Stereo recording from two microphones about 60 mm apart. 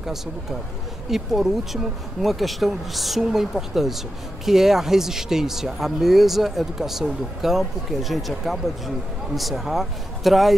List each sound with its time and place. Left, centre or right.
0.0 s speech: centre